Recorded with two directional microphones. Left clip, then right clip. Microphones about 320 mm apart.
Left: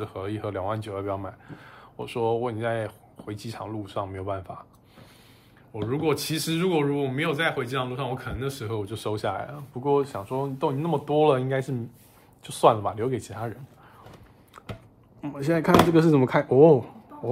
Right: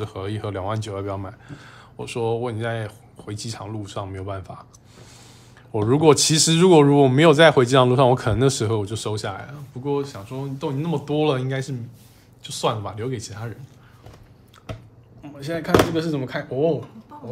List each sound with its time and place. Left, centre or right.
0.0 s speech: centre
5.7 s speech: centre
15.2 s speech: centre